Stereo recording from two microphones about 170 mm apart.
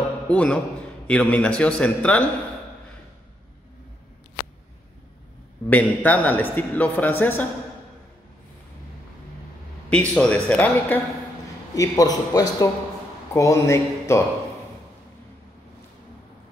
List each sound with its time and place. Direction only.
0.3 s a man's voice: 5° left (ahead or behind)
5.7 s a man's voice: 10° left (ahead or behind)
9.8 s a man's voice: 5° left (ahead or behind)
11.7 s a man's voice: 20° left (ahead or behind)